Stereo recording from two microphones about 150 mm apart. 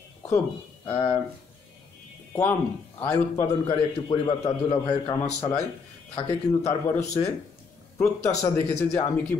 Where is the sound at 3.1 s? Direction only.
25° left (ahead or behind).